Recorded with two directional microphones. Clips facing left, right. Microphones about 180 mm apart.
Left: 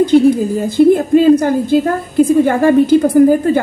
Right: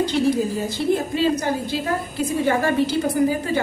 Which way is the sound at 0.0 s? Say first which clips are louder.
Left 10 dB; 50° left (ahead or behind).